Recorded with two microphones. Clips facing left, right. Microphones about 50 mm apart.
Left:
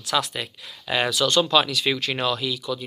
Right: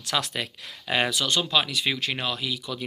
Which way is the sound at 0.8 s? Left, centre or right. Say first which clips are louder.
Left 3 dB; right.